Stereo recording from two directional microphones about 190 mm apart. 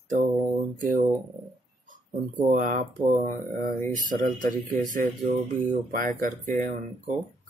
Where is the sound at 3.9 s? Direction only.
45° right (ahead or behind).